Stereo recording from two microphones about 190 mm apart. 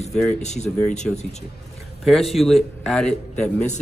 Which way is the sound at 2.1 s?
Centre (ahead or behind).